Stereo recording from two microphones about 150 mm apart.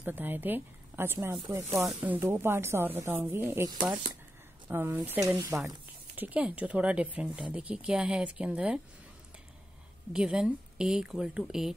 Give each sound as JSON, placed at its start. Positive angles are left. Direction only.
{"t": 0.0, "sound": "speech", "side_deg": -10}
{"t": 1.9, "sound": "speech", "side_deg": -5}
{"t": 10.1, "sound": "a woman's voice", "side_deg": -5}